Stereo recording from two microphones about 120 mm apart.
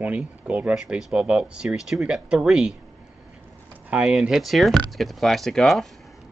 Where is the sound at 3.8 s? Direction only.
10° right (ahead or behind).